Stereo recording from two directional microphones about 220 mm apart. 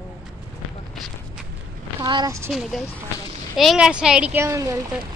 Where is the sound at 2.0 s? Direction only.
20° right (ahead or behind).